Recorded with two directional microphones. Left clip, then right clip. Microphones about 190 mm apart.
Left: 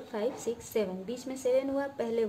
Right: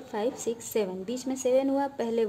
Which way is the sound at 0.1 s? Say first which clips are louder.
Right 3 dB; 45° right (ahead or behind).